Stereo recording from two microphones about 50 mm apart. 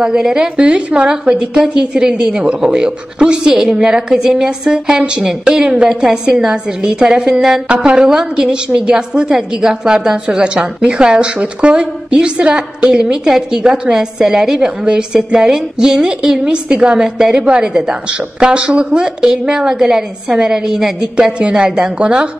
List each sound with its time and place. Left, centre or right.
0.0 s a woman's voice: centre